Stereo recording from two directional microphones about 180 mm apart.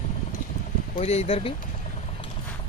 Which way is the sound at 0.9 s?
35° left (ahead or behind).